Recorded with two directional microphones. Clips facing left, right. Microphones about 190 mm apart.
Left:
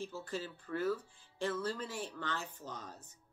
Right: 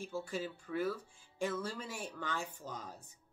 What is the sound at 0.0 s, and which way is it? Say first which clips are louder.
Speech: right 2 dB; 10° right (ahead or behind).